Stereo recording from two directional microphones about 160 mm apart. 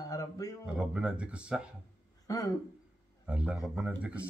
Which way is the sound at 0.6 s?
5° right (ahead or behind).